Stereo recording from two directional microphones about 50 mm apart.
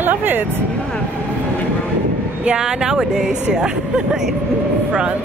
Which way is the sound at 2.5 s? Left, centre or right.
Centre.